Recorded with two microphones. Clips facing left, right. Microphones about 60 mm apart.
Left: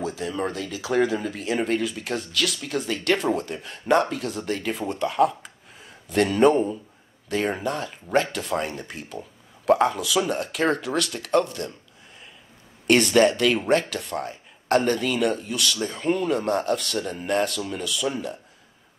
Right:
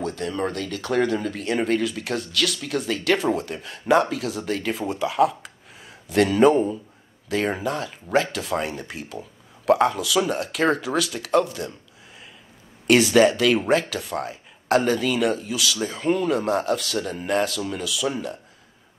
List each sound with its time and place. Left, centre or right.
0.0 s speech: centre
12.8 s speech: centre